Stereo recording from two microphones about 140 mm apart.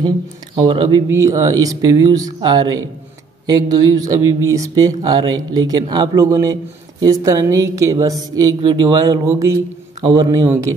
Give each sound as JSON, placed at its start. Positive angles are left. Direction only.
{"t": 0.6, "sound": "speech", "side_deg": -35}
{"t": 1.0, "sound": "speech", "side_deg": -20}
{"t": 10.0, "sound": "a man's voice", "side_deg": -35}